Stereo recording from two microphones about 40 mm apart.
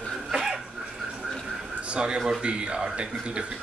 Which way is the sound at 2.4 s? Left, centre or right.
Right.